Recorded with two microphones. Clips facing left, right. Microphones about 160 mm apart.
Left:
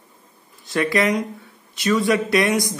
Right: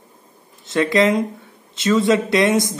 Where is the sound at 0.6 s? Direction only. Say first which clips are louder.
Right 4 dB; 20° right (ahead or behind).